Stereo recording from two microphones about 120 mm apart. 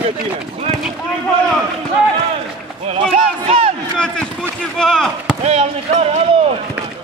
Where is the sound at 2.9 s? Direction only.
55° right (ahead or behind).